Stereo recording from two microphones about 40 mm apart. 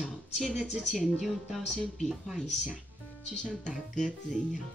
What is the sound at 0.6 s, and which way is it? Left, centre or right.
Speech, centre.